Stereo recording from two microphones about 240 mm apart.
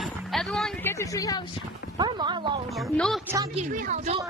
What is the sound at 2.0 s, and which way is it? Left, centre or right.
Speech, centre.